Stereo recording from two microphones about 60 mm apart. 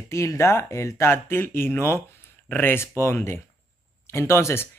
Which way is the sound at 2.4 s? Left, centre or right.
Left.